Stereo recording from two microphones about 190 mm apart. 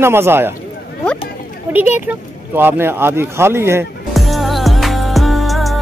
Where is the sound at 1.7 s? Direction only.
10° right (ahead or behind).